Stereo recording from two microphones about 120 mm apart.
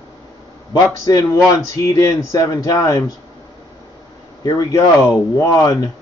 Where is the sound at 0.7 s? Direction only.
30° left (ahead or behind).